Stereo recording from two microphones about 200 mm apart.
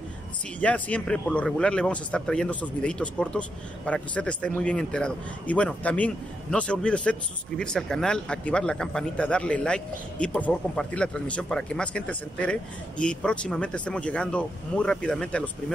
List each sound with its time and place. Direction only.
0.6 s speech: 5° left (ahead or behind)